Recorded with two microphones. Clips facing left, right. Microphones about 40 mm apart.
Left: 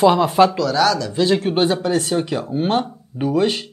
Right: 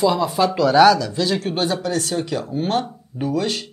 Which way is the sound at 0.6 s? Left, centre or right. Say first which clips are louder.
Right 5 dB; centre.